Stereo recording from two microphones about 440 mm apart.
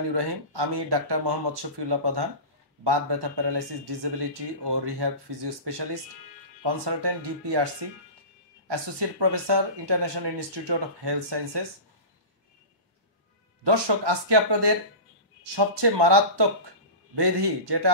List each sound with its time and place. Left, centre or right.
0.1 s a man's voice: right
13.7 s a man's voice: right